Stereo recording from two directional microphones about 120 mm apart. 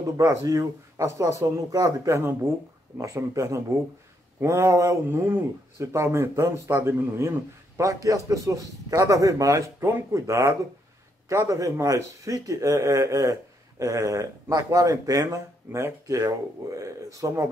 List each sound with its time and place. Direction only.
0.0 s a man's voice: 25° right (ahead or behind)